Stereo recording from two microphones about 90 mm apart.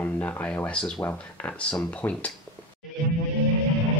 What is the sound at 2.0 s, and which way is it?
Speech, 15° left (ahead or behind).